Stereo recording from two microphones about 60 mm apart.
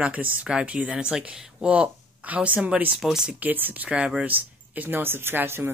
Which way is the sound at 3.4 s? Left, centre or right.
Right.